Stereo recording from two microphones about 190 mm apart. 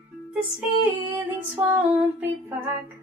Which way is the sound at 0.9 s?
15° right (ahead or behind).